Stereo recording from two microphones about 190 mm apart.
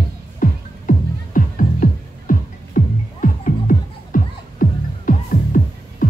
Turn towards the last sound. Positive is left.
turn(degrees=45)  # may be behind; listen again after turning